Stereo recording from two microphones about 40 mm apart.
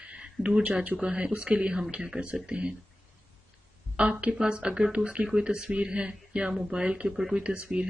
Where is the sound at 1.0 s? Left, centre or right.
Right.